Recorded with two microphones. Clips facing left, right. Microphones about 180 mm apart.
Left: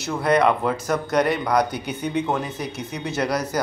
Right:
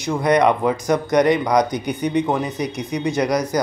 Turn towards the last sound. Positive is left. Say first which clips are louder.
# right 5 dB
turn(degrees=-15)  # may be behind; listen again after turning